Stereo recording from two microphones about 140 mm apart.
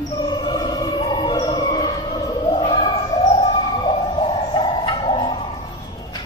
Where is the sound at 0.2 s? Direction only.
30° left (ahead or behind).